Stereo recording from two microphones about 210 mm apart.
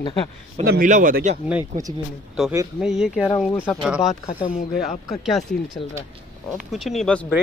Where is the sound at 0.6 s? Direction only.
45° right (ahead or behind).